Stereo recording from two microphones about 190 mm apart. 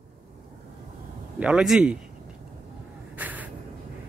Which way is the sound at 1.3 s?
5° right (ahead or behind).